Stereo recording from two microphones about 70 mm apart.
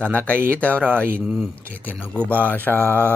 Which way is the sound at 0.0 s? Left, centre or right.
Left.